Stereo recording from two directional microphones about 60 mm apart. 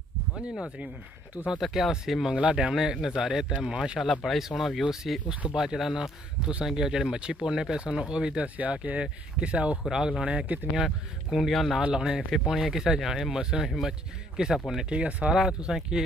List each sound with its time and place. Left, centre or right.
1.6 s speech: centre
2.3 s speech: centre
4.0 s speech: centre
5.3 s speech: centre
5.6 s speech: centre
10.7 s speech: centre
11.8 s speech: centre
14.9 s speech: centre